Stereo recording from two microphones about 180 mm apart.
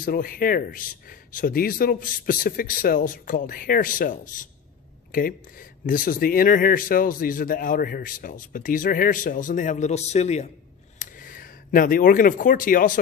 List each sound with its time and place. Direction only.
0.0 s speech: 55° left (ahead or behind)
11.0 s speech: 50° left (ahead or behind)